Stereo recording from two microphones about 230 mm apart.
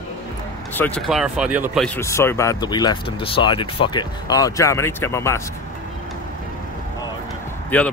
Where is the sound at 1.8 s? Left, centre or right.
Centre.